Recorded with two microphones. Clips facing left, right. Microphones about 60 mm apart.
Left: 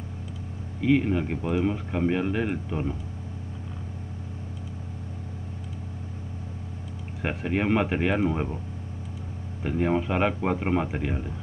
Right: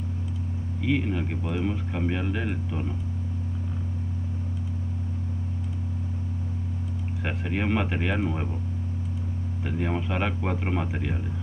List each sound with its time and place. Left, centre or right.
0.7 s speech: centre
7.2 s speech: centre
9.6 s speech: centre